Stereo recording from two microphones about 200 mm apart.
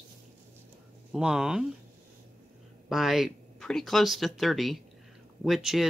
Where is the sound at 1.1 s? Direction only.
5° right (ahead or behind).